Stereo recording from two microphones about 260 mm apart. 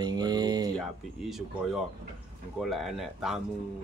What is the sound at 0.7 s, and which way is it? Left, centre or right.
Speech, centre.